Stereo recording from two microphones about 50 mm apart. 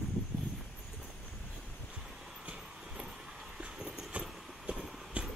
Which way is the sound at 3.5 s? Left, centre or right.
Centre.